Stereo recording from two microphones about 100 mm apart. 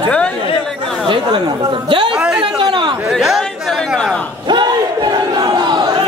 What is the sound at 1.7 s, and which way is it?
Speech, 55° right (ahead or behind).